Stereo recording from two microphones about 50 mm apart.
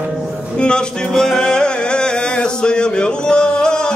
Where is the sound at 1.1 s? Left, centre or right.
Centre.